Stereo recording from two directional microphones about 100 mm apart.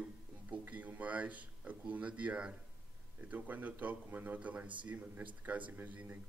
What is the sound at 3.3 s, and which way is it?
Speech, 15° right (ahead or behind).